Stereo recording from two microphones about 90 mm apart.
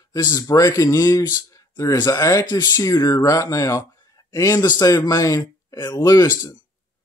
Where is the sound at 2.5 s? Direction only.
50° left (ahead or behind).